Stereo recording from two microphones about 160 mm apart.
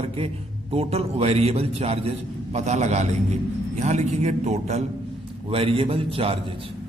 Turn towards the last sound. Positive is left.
turn(degrees=-35)  # may be behind; listen again after turning